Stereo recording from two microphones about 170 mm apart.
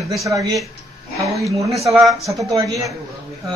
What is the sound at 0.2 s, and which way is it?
A man's voice, 20° right (ahead or behind).